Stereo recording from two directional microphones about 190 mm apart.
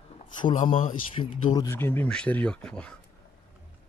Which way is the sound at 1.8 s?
10° left (ahead or behind).